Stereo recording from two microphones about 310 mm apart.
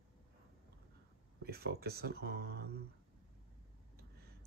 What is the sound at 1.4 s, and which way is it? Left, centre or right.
Speech, right.